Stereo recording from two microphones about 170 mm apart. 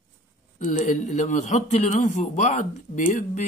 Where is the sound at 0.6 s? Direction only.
45° left (ahead or behind).